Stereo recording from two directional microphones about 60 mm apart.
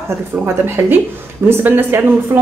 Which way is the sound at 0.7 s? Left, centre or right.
Right.